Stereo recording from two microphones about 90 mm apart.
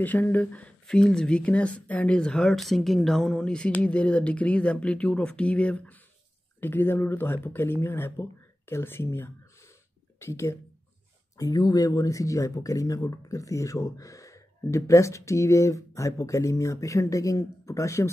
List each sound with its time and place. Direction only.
0.0 s speech: 20° left (ahead or behind)
11.3 s speech: 45° left (ahead or behind)